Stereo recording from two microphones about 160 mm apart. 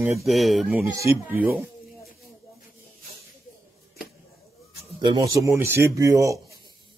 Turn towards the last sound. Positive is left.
turn(degrees=-20)  # may be behind; listen again after turning